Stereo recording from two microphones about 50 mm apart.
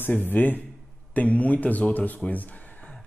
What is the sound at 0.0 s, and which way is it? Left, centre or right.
A man's voice, left.